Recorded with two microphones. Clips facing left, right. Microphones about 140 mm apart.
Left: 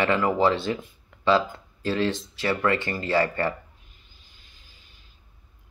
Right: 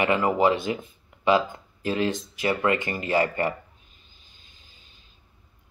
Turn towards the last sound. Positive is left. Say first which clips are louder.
# even
turn(degrees=-20)  # may be behind; listen again after turning